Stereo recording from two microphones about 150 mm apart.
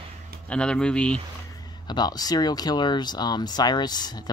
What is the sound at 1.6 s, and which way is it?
Speech, 30° left (ahead or behind).